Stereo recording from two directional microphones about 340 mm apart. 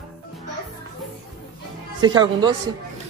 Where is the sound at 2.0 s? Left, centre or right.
Centre.